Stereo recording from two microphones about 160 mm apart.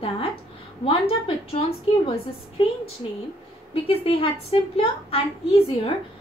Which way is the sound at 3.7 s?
35° left (ahead or behind).